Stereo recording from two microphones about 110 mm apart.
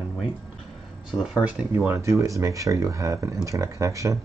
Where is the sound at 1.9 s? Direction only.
30° right (ahead or behind).